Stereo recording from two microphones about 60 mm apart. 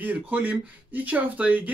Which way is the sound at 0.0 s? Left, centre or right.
Right.